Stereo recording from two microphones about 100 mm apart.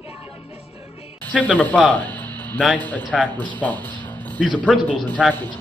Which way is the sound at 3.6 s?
15° left (ahead or behind).